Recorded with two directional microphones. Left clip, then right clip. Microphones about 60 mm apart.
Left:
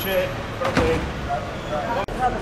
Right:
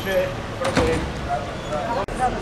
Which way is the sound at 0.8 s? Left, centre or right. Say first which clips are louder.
Even; centre.